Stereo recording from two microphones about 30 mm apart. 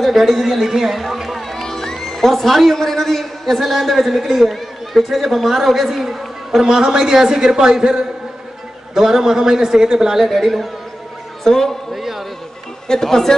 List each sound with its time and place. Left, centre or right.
0.0 s a man's voice: centre
1.5 s a man's voice: centre
6.6 s a man's voice: centre
10.2 s a man's voice: centre
11.4 s speech: centre
11.9 s a sound: centre
12.8 s speech: centre